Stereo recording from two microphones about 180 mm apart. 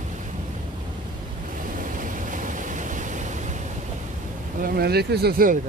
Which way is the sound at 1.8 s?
45° right (ahead or behind).